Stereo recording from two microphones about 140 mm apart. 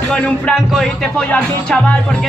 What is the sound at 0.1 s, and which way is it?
Speech, 5° left (ahead or behind).